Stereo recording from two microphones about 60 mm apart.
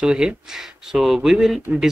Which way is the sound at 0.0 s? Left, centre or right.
Centre.